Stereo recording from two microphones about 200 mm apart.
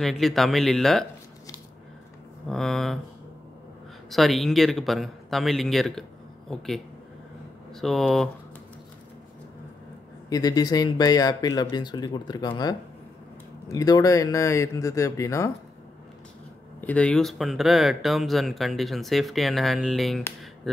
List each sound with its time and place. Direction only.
0.0 s speech: centre (ahead or behind)
2.5 s speech: centre (ahead or behind)
4.1 s speech: centre (ahead or behind)
10.3 s speech: 20° left (ahead or behind)
16.8 s speech: 5° left (ahead or behind)